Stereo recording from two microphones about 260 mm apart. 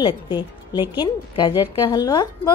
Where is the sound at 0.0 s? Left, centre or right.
Centre.